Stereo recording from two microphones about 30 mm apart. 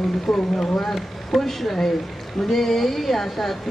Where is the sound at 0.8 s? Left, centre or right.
Centre.